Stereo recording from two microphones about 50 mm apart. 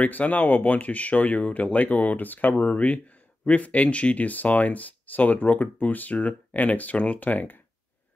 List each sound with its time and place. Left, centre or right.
0.0 s speech: left